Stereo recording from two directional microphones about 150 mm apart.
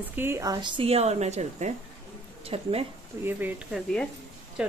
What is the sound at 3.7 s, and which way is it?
Speech, 5° left (ahead or behind).